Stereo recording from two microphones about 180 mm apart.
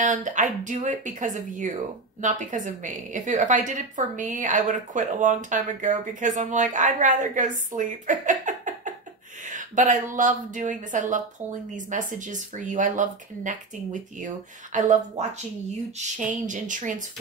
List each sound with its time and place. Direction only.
0.0 s a woman's voice: 45° right (ahead or behind)